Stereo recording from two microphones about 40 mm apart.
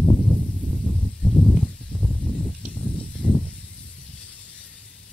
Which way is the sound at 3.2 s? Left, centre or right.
Left.